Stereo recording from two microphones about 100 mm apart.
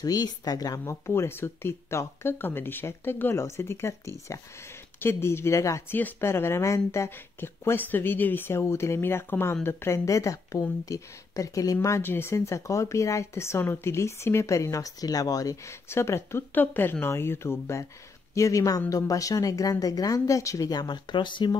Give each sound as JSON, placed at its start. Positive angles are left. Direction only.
{"t": 0.0, "sound": "a woman's voice", "side_deg": 40}
{"t": 0.7, "sound": "speech", "side_deg": 25}
{"t": 15.9, "sound": "a woman's voice", "side_deg": 25}